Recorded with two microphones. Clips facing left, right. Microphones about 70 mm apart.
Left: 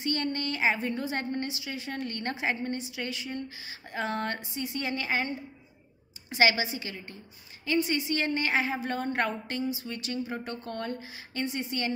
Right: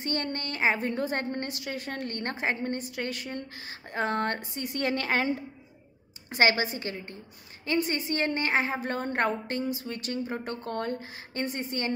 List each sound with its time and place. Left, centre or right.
0.0 s a woman's voice: right
6.3 s a woman's voice: right